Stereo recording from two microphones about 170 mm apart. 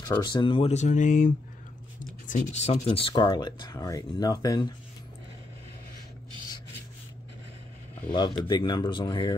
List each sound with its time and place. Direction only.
0.2 s speech: 25° left (ahead or behind)
8.1 s speech: 30° left (ahead or behind)